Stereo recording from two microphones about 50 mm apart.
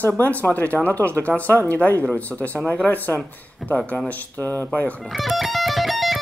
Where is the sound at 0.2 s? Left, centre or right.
Left.